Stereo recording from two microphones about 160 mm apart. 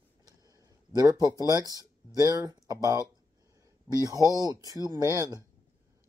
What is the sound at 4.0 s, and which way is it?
Speech, 20° right (ahead or behind).